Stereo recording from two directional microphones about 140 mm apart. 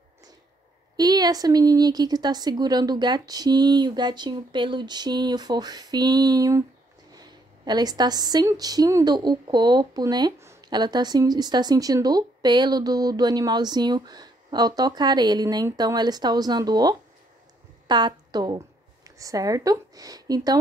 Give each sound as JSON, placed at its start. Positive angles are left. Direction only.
{"t": 0.9, "sound": "a woman's voice", "side_deg": -30}